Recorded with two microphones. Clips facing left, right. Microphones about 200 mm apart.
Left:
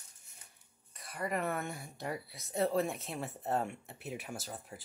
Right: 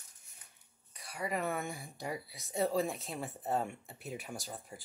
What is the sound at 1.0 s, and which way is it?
Speech, centre (ahead or behind).